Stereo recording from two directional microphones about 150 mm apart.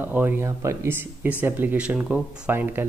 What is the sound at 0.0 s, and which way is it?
Speech, 10° right (ahead or behind).